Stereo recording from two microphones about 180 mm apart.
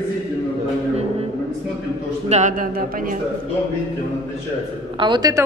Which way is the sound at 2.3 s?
45° right (ahead or behind).